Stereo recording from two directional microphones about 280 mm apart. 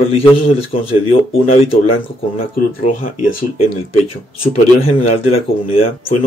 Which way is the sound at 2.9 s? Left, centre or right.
Left.